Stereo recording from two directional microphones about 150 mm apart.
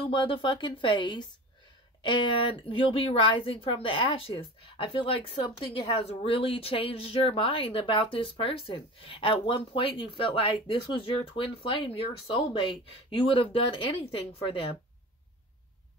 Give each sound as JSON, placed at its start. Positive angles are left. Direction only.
{"t": 0.1, "sound": "a woman's voice", "side_deg": 35}